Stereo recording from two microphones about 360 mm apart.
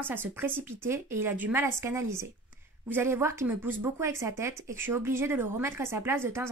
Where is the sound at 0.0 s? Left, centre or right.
Centre.